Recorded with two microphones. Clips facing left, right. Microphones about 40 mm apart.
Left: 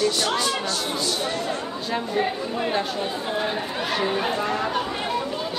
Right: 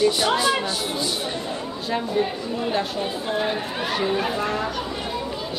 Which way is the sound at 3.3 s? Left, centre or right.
Centre.